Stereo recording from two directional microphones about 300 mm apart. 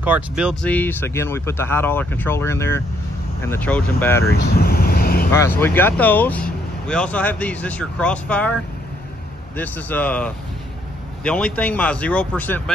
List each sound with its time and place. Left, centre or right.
0.0 s speech: centre
4.3 s vehicle: left
5.3 s speech: centre
9.6 s speech: centre